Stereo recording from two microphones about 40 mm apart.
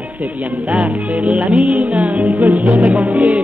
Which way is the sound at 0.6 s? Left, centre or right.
Right.